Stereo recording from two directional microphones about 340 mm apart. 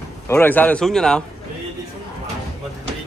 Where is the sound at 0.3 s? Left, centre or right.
Centre.